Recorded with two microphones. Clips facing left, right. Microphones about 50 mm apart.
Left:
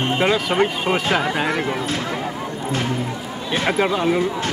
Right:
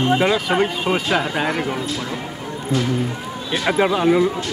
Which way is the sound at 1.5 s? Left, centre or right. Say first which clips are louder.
Left 1 dB; left.